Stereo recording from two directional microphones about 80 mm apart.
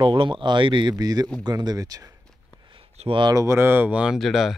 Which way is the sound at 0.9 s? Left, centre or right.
Right.